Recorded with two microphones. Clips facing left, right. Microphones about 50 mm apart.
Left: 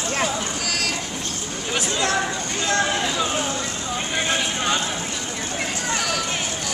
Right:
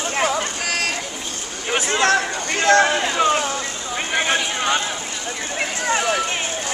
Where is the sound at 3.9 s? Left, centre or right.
Right.